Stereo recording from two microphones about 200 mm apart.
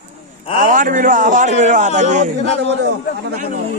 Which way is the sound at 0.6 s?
40° right (ahead or behind).